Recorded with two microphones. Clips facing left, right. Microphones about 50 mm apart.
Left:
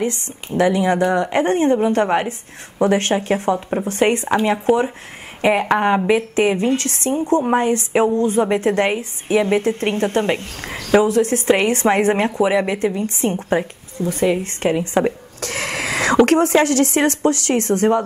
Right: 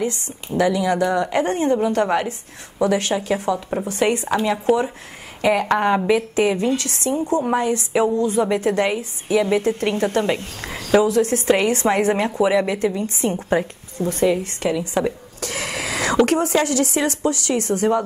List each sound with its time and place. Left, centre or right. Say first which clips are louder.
0.0 s a woman's voice: left 2 dB; left
4.7 s speech: left 1 dB; centre
5.4 s a woman's voice: left 2 dB; left
12.4 s a woman's voice: left 1 dB; left
12.7 s a woman's voice: left 1 dB; left